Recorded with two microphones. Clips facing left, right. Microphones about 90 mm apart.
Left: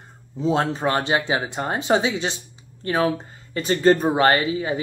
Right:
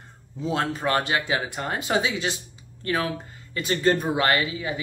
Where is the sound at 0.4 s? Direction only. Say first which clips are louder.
Left 5 dB; 25° left (ahead or behind).